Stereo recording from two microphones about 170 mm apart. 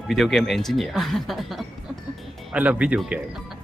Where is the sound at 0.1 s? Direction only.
Centre (ahead or behind).